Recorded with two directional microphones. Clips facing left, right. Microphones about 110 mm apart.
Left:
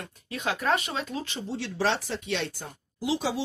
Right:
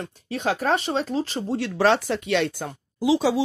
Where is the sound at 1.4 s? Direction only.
50° right (ahead or behind); by 2.7 s 70° right (ahead or behind).